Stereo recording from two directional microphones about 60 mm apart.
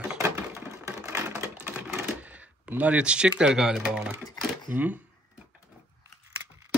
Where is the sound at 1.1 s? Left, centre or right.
Right.